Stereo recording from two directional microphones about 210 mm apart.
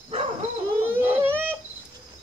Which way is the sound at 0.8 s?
10° right (ahead or behind).